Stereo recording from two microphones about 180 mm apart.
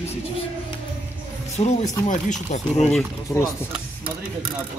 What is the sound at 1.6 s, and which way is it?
Speech, 35° left (ahead or behind).